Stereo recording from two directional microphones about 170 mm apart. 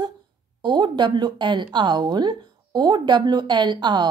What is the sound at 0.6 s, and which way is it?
Speech, 25° right (ahead or behind).